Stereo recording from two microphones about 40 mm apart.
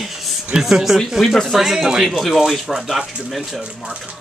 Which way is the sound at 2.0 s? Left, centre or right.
Centre.